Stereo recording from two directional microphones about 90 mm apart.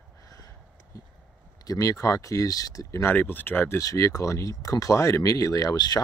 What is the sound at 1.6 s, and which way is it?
Speech, 40° left (ahead or behind).